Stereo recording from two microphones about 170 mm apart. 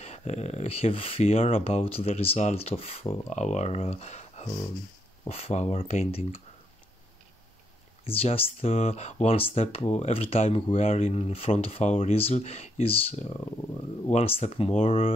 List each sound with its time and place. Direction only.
0.0 s speech: 40° left (ahead or behind)
8.0 s speech: 35° left (ahead or behind)